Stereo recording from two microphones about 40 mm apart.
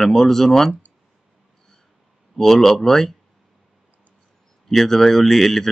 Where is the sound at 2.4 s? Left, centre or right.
Centre.